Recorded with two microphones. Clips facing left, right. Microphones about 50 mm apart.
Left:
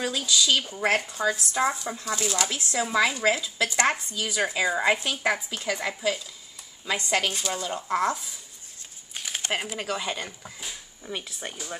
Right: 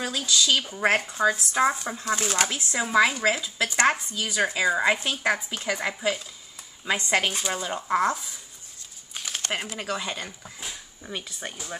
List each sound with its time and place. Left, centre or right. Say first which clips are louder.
0.0 s speech: even; centre; by 1.8 s right
2.0 s speech: right 3 dB; right
2.4 s speech: even; centre
4.2 s speech: right 1 dB; centre
5.5 s speech: right 1 dB; centre
8.0 s speech: even; centre
9.1 s a sound: even; centre
9.4 s speech: left 2 dB; centre